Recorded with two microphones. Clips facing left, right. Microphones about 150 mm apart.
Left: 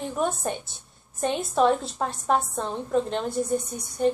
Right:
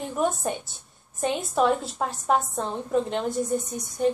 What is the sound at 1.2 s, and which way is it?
A woman's voice, 5° right (ahead or behind).